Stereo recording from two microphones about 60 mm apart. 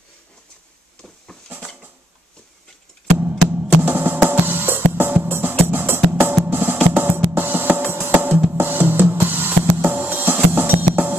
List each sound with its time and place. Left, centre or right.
1.0 s a sound: centre
3.2 s music: right
8.5 s drum kit: right